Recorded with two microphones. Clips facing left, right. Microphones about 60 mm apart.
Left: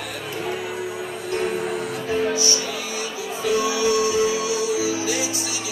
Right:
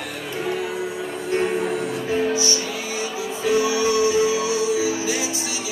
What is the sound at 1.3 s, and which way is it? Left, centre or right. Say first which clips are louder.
Music: right 3 dB; right.